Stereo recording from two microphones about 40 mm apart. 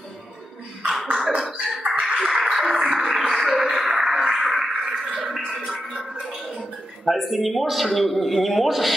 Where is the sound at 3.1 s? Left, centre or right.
Centre.